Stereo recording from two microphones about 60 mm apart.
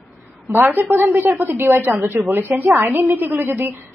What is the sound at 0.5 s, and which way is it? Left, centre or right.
A woman's voice, right.